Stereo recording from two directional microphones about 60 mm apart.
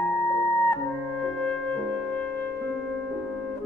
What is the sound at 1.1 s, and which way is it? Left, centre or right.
Music, left.